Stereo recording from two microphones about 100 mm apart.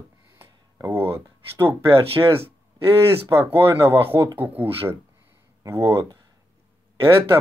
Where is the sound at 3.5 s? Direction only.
25° right (ahead or behind).